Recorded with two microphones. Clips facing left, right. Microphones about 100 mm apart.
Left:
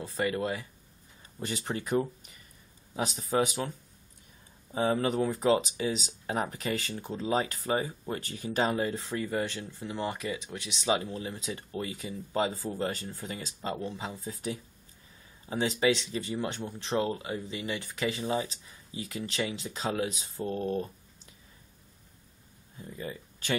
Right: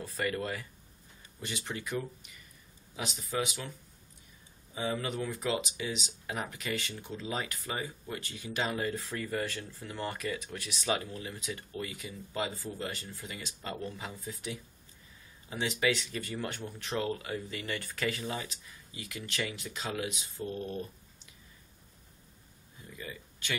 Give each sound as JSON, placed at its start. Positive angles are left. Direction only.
{"t": 0.0, "sound": "speech", "side_deg": 25}
{"t": 1.4, "sound": "speech", "side_deg": 35}
{"t": 4.7, "sound": "speech", "side_deg": 40}
{"t": 22.8, "sound": "speech", "side_deg": 35}